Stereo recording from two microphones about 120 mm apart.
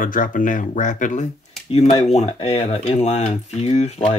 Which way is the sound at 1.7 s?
55° left (ahead or behind).